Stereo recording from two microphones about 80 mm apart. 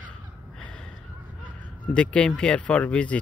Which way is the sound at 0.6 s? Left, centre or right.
Centre.